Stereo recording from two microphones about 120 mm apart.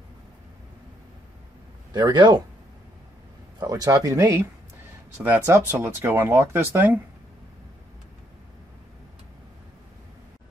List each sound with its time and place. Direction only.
2.0 s speech: 40° right (ahead or behind)
3.5 s speech: 30° right (ahead or behind); by 7.0 s 15° right (ahead or behind)